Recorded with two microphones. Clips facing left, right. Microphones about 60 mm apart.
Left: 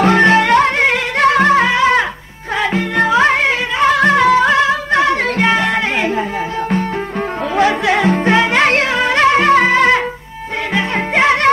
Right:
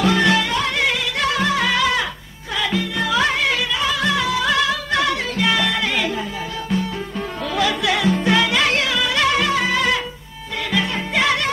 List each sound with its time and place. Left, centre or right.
0.0 s music: left
7.5 s music: left